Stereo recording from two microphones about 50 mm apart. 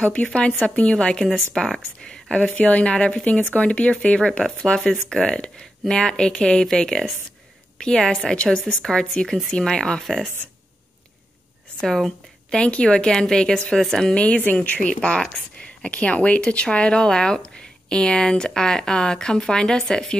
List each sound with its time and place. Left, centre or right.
0.0 s speech: left
2.5 s speech: left; by 10.2 s centre
12.4 s speech: centre
14.1 s speech: left